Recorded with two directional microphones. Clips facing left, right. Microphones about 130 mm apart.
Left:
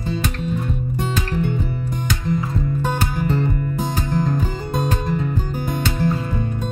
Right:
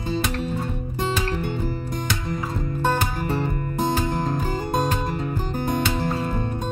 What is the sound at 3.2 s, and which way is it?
Music, 15° right (ahead or behind).